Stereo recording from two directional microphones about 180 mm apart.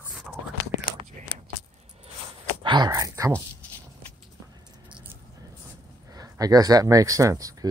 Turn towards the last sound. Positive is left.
turn(degrees=-20)  # may be behind; listen again after turning